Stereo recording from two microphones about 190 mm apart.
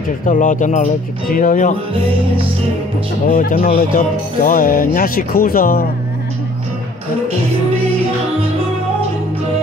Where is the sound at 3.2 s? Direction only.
45° left (ahead or behind).